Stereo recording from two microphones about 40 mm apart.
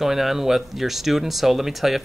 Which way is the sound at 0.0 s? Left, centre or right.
Centre.